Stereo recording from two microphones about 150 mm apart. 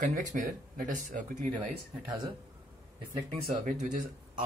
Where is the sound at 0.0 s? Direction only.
60° right (ahead or behind).